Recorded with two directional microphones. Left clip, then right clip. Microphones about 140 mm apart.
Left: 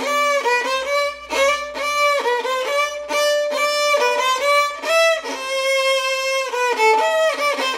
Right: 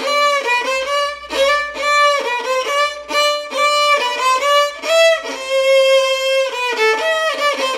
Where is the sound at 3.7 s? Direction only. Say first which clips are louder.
Right 1 dB; centre (ahead or behind).